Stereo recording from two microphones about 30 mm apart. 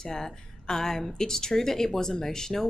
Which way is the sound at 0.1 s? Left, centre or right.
Centre.